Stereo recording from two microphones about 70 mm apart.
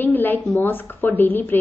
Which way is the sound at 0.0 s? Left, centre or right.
Left.